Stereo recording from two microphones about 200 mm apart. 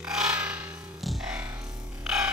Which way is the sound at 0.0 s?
5° right (ahead or behind).